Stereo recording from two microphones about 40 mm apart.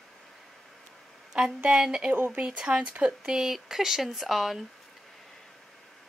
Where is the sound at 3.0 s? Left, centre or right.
Centre.